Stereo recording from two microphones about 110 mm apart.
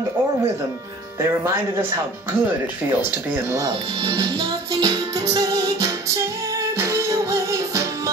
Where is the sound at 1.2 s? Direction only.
25° right (ahead or behind).